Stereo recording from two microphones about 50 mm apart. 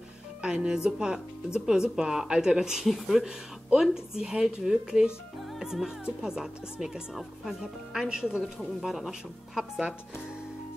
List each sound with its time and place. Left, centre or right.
0.4 s speech: centre
5.6 s music: centre
6.2 s speech: centre